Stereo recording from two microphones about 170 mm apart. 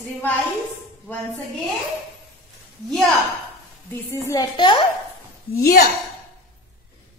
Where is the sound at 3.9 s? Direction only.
15° left (ahead or behind).